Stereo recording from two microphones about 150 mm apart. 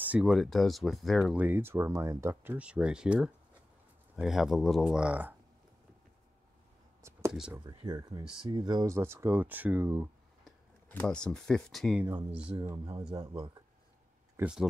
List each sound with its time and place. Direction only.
0.0 s speech: 5° right (ahead or behind)
7.0 s a sound: 20° right (ahead or behind)
7.5 s speech: 25° right (ahead or behind)
10.4 s speech: 10° left (ahead or behind)
12.6 s speech: 25° right (ahead or behind)
14.3 s speech: 5° right (ahead or behind)